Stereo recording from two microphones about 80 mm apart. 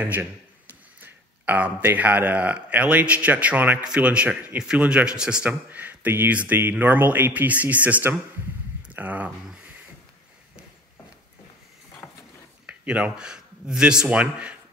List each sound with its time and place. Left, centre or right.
0.0 s speech: right
12.6 s speech: centre